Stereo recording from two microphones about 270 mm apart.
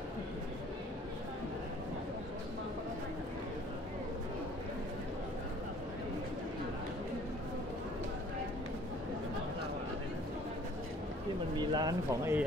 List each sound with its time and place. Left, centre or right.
11.5 s speech: centre